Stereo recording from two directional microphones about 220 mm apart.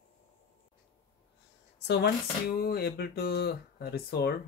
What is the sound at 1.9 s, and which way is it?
Speech, 45° left (ahead or behind).